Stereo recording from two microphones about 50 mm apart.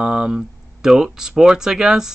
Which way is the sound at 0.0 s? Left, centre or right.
Centre.